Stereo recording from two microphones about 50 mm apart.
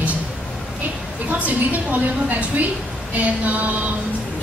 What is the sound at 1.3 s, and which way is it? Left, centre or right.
A woman's voice, right.